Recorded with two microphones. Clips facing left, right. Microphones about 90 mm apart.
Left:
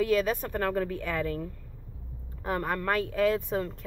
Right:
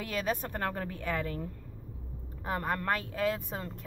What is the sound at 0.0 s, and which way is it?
Speech, 25° right (ahead or behind).